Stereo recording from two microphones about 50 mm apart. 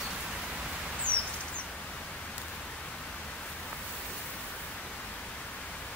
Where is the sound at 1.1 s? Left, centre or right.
Left.